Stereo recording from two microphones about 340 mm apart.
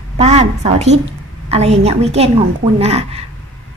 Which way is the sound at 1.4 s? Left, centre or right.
Centre.